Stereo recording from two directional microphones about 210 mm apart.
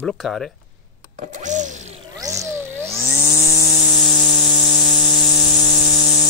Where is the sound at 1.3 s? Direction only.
35° right (ahead or behind).